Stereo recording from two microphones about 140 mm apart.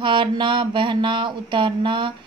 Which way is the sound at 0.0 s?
35° right (ahead or behind).